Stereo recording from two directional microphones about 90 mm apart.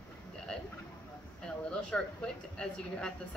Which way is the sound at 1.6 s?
10° left (ahead or behind).